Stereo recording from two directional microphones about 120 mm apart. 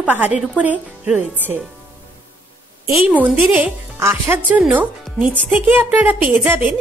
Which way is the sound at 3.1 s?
15° right (ahead or behind).